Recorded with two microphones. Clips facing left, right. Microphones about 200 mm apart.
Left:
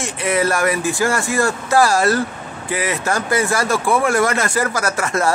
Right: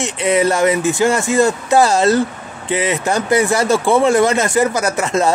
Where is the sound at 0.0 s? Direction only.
20° right (ahead or behind).